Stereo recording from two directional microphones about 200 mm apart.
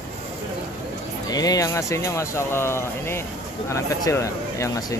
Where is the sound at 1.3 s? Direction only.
20° left (ahead or behind).